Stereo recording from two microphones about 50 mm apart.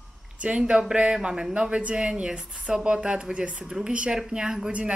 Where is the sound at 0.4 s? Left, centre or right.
Right.